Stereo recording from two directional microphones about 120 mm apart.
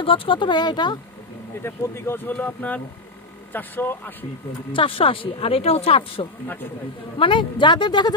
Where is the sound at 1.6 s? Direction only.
20° left (ahead or behind).